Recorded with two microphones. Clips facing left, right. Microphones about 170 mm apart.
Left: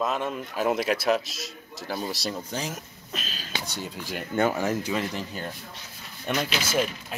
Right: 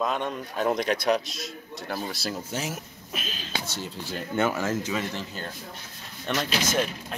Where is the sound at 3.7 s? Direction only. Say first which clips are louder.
Even; 15° left (ahead or behind).